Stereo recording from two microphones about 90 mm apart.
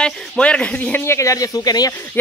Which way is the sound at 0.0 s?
10° left (ahead or behind).